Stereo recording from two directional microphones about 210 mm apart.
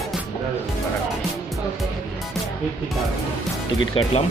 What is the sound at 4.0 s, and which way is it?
Speech, 25° left (ahead or behind).